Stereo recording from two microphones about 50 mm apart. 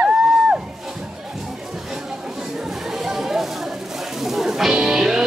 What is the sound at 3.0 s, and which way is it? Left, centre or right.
Chatter, centre.